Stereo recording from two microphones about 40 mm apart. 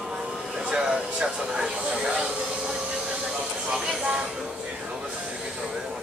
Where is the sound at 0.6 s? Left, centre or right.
Centre.